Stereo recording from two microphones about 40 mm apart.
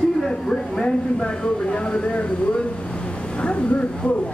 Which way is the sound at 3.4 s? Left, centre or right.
Left.